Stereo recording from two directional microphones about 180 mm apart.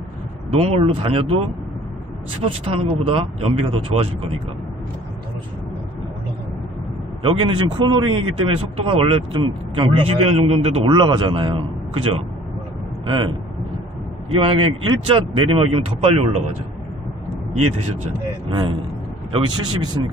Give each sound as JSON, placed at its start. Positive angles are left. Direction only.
{"t": 0.5, "sound": "speech", "side_deg": -35}
{"t": 2.4, "sound": "speech", "side_deg": -30}
{"t": 7.2, "sound": "speech", "side_deg": -30}
{"t": 14.4, "sound": "speech", "side_deg": -30}
{"t": 18.5, "sound": "speech", "side_deg": -25}